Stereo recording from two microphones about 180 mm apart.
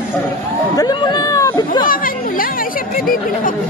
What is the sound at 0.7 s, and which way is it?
Speech, 25° left (ahead or behind).